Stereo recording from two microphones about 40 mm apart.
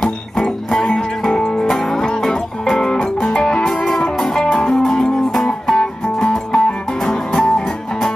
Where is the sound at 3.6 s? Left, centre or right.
Centre.